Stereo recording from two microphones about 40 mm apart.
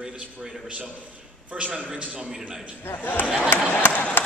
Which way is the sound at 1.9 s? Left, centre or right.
Right.